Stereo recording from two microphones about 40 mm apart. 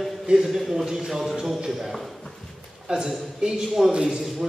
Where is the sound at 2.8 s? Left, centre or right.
Centre.